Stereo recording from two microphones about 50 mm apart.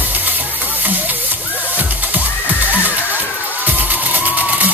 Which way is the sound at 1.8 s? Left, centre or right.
Right.